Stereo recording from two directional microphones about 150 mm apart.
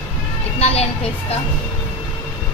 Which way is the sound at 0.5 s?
40° left (ahead or behind).